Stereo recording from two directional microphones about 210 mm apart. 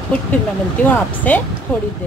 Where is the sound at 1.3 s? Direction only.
10° left (ahead or behind).